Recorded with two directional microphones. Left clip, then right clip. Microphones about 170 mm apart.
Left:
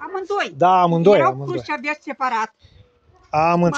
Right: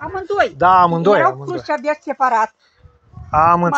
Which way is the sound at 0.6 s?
35° left (ahead or behind).